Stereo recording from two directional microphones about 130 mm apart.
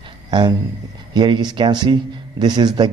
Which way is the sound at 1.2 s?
35° right (ahead or behind).